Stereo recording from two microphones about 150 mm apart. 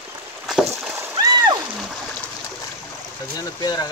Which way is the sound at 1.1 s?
25° right (ahead or behind).